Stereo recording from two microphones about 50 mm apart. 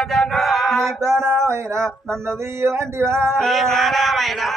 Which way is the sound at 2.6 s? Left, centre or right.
Right.